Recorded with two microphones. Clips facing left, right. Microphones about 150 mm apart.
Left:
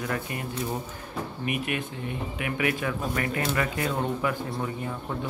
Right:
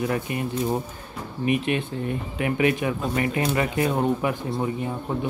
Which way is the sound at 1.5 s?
25° right (ahead or behind).